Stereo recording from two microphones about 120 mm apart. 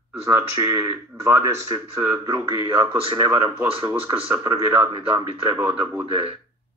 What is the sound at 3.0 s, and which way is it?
Speech, 50° right (ahead or behind).